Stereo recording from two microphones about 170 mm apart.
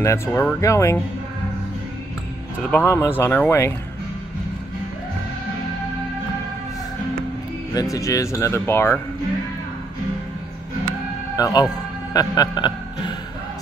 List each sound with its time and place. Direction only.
0.0 s speech: 15° left (ahead or behind)
2.7 s speech: 15° left (ahead or behind)
7.7 s speech: 20° left (ahead or behind)
10.9 s music: 20° left (ahead or behind)